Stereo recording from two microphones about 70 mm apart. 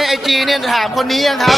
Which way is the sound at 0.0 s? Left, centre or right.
Centre.